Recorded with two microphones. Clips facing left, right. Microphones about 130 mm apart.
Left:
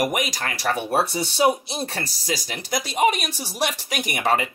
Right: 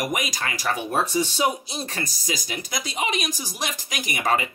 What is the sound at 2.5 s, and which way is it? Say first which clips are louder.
Speech: left 4 dB; 50° left (ahead or behind).